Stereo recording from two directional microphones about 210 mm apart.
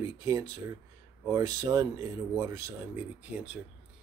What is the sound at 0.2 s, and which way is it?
Speech, 20° right (ahead or behind).